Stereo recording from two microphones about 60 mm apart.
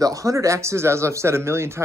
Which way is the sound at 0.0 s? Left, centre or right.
Right.